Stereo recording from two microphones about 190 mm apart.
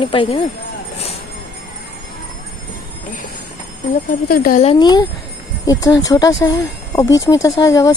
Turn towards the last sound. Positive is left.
turn(degrees=15)  # may be behind; listen again after turning